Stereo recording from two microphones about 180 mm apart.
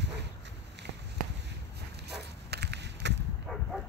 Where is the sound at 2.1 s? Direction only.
65° right (ahead or behind).